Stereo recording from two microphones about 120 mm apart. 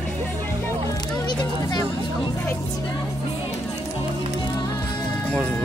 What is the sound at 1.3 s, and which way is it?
Music, 35° left (ahead or behind).